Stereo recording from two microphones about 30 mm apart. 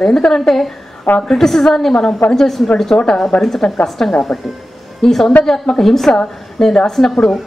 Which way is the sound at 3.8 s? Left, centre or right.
Centre.